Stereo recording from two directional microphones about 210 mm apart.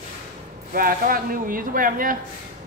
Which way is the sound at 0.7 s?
45° right (ahead or behind).